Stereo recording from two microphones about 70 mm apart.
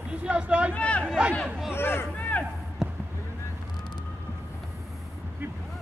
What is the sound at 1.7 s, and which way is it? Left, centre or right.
Speech, left.